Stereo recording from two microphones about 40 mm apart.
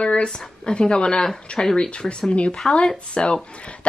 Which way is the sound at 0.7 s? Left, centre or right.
Left.